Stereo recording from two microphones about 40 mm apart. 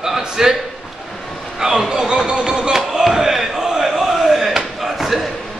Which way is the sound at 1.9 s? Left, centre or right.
Centre.